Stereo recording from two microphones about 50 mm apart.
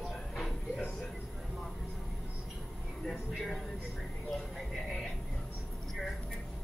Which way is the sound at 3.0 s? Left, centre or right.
Centre.